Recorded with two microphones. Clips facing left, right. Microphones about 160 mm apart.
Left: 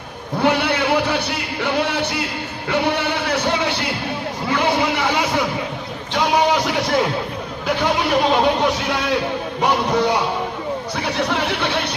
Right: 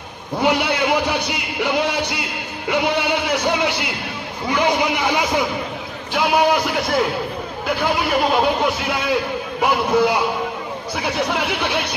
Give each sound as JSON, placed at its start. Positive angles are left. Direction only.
{"t": 0.4, "sound": "a man's voice", "side_deg": -15}
{"t": 6.1, "sound": "a sound", "side_deg": -5}
{"t": 7.6, "sound": "a man's voice", "side_deg": -5}
{"t": 11.1, "sound": "a man's voice", "side_deg": -10}